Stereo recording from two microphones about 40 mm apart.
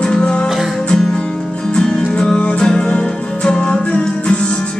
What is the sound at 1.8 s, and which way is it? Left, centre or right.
Music, centre.